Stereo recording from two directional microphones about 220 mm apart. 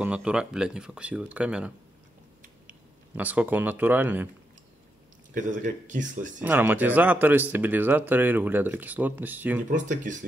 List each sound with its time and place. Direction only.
0.0 s speech: 5° right (ahead or behind)
3.2 s speech: 5° right (ahead or behind)
5.3 s speech: 35° right (ahead or behind)
6.4 s speech: 10° right (ahead or behind)
9.7 s speech: 35° right (ahead or behind)